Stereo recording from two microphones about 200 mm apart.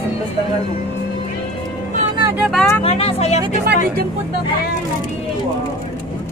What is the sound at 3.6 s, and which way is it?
Speech, 55° right (ahead or behind).